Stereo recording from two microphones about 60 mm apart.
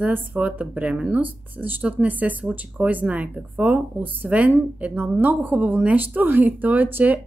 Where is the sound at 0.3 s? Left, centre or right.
Right.